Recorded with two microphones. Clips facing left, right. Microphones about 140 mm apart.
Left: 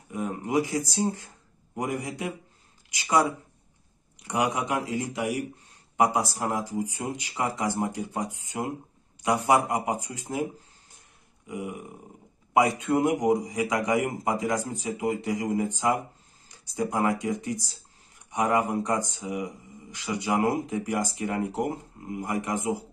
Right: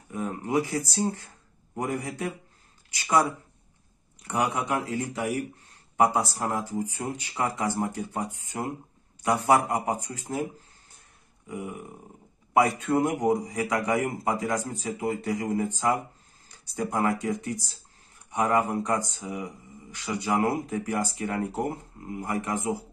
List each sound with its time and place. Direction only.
0.1 s speech: 15° left (ahead or behind)
11.4 s a sound: 15° left (ahead or behind)
12.5 s speech: 15° left (ahead or behind)